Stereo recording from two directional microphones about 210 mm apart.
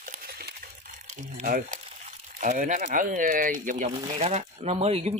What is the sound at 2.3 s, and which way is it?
Speech, 40° right (ahead or behind).